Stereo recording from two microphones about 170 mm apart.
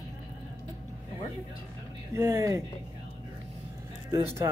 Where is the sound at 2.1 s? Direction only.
20° right (ahead or behind).